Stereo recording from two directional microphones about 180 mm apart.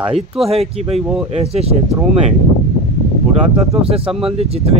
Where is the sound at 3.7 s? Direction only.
30° right (ahead or behind).